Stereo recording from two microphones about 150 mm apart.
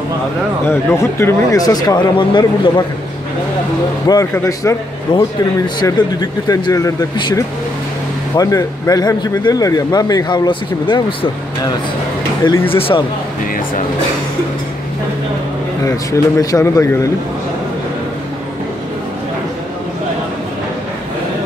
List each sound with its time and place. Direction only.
0.7 s a man's voice: 15° left (ahead or behind); by 2.8 s 30° left (ahead or behind)
4.1 s a man's voice: 20° left (ahead or behind)
5.1 s a man's voice: 35° left (ahead or behind)
12.7 s speech: 40° left (ahead or behind)
15.8 s a man's voice: 20° left (ahead or behind)